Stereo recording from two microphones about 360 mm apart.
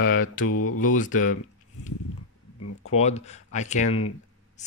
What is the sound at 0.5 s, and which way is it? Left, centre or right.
Mantra, left.